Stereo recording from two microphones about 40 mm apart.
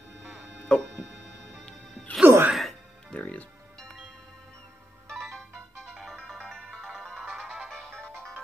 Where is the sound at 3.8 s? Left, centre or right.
Centre.